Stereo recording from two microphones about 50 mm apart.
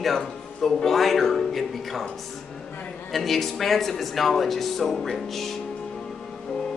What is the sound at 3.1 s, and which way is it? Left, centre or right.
Speech, centre.